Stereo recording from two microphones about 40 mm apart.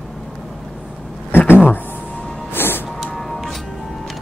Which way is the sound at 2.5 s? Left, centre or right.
Left.